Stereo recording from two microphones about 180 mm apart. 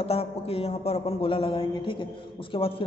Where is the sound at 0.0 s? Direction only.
35° left (ahead or behind).